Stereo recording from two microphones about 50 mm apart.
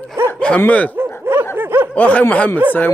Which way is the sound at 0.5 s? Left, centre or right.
Left.